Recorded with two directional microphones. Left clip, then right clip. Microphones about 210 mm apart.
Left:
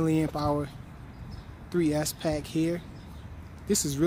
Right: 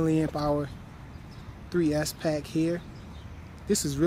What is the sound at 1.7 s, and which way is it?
Speech, centre (ahead or behind).